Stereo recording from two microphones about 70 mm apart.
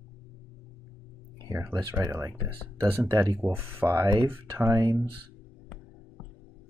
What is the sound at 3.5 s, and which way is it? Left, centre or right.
Speech, right.